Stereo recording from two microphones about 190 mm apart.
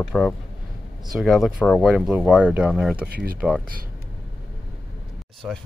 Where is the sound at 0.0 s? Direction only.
Centre (ahead or behind).